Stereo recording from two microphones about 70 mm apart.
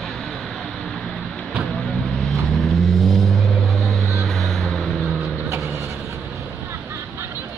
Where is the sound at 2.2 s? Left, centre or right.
Centre.